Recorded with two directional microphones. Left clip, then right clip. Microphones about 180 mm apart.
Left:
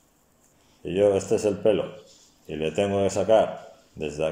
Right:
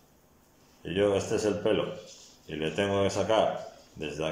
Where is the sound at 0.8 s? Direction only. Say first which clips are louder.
Left 5 dB; 20° left (ahead or behind).